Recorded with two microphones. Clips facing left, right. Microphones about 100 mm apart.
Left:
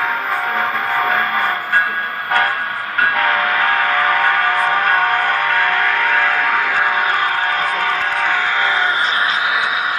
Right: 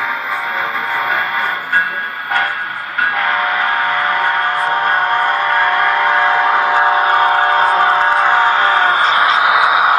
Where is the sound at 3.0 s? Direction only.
20° right (ahead or behind).